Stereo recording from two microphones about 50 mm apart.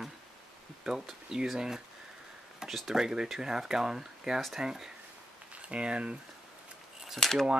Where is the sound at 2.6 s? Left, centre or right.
Centre.